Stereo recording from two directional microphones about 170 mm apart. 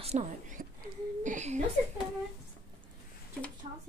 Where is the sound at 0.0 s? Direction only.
40° right (ahead or behind).